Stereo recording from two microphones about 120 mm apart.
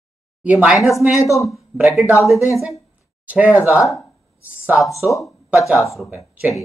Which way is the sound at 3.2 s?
10° right (ahead or behind).